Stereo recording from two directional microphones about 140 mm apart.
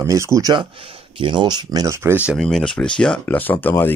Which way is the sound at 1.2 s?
35° right (ahead or behind).